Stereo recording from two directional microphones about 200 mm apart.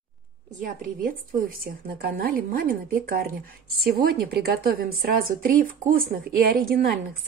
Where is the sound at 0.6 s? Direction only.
45° right (ahead or behind).